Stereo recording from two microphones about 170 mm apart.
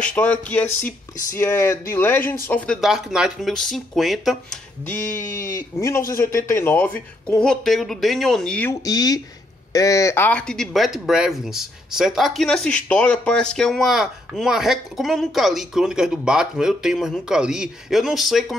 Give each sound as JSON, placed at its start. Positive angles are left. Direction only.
{"t": 0.0, "sound": "speech", "side_deg": 10}
{"t": 4.8, "sound": "speech", "side_deg": 10}
{"t": 8.8, "sound": "speech", "side_deg": 20}